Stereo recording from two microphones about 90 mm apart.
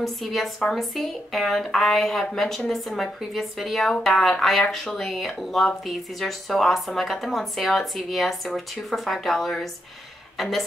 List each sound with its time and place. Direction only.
0.0 s a woman's voice: centre (ahead or behind)